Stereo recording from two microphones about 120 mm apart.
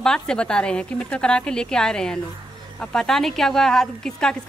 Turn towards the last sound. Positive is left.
turn(degrees=5)  # may be behind; listen again after turning